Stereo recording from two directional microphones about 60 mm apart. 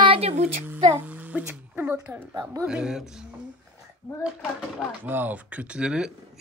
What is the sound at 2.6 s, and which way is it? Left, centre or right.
Speech, centre.